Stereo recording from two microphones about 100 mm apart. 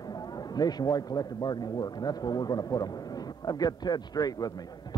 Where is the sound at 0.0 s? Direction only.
40° left (ahead or behind).